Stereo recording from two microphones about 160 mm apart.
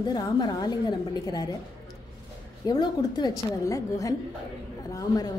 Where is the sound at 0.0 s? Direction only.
25° left (ahead or behind).